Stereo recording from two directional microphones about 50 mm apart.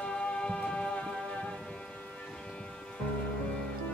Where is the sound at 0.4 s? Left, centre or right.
Centre.